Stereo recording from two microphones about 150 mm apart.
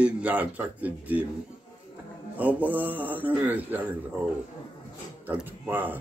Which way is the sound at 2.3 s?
10° right (ahead or behind).